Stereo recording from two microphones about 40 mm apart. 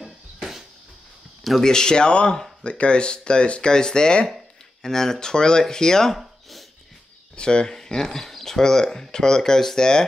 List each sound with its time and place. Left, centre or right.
0.0 s a sound: centre
1.6 s speech: centre
7.3 s speech: left